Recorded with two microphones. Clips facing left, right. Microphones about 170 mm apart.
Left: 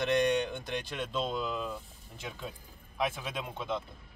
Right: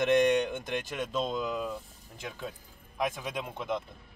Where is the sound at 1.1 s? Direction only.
15° right (ahead or behind).